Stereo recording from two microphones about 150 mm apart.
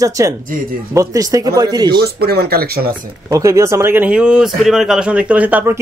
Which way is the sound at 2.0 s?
90° right.